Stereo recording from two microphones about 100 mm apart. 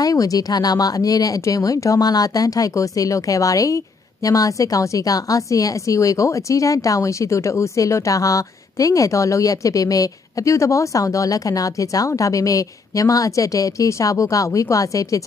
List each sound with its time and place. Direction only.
0.0 s speech: 35° left (ahead or behind)